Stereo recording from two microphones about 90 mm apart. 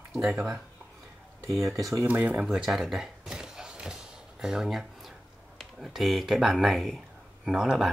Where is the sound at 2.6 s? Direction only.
5° right (ahead or behind).